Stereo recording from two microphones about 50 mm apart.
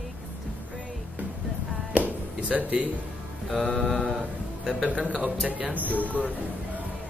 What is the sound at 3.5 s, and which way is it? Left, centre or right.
Speech, centre.